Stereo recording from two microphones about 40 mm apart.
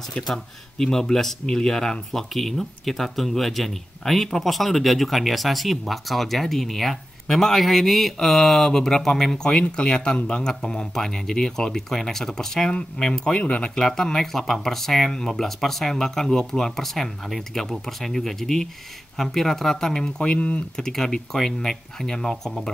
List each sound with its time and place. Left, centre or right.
0.3 s speech: centre
2.3 s speech: centre; by 13.7 s left
13.7 s speech: centre
20.3 s speech: left
20.7 s speech: centre